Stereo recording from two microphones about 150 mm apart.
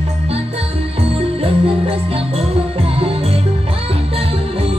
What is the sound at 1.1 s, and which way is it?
Music, 40° right (ahead or behind).